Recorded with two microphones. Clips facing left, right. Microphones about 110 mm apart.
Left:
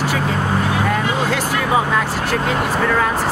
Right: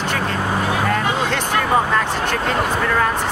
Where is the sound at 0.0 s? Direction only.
5° left (ahead or behind).